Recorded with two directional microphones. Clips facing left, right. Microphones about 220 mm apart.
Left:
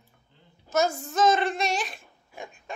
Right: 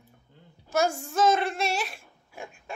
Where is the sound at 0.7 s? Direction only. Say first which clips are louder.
Left 1 dB; 10° right (ahead or behind).